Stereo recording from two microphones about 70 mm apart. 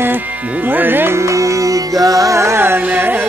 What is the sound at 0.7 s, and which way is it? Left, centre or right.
Speech, right.